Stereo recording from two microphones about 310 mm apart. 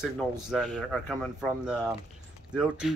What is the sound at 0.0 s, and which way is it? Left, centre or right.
Speech, centre.